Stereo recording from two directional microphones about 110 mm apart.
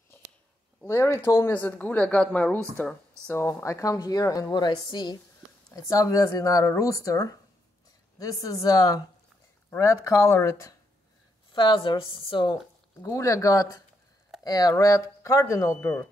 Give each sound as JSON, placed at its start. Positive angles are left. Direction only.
{"t": 0.8, "sound": "speech", "side_deg": 25}
{"t": 11.5, "sound": "speech", "side_deg": 50}
{"t": 13.0, "sound": "speech", "side_deg": 30}